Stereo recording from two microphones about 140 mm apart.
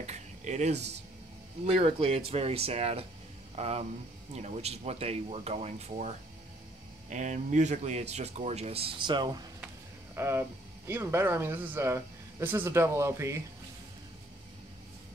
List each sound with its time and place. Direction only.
0.0 s a sound: 55° right (ahead or behind)
1.7 s speech: 45° right (ahead or behind)
7.1 s speech: 60° right (ahead or behind); by 9.4 s 30° right (ahead or behind)
10.1 s speech: 20° right (ahead or behind)